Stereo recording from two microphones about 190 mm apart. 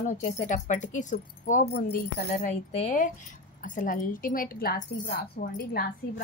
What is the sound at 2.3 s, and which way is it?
A woman's voice, 35° left (ahead or behind).